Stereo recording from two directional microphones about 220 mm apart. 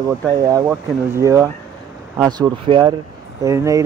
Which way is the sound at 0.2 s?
15° right (ahead or behind).